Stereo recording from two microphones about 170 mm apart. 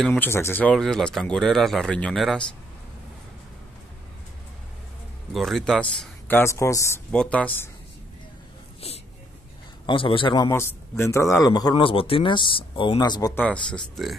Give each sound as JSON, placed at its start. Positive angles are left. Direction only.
{"t": 0.0, "sound": "speech", "side_deg": 10}
{"t": 5.3, "sound": "a man's voice", "side_deg": 0}
{"t": 7.1, "sound": "a man's voice", "side_deg": 5}
{"t": 8.8, "sound": "a sound", "side_deg": 35}
{"t": 9.8, "sound": "a man's voice", "side_deg": 30}
{"t": 10.5, "sound": "a man's voice", "side_deg": 15}
{"t": 13.3, "sound": "a man's voice", "side_deg": 10}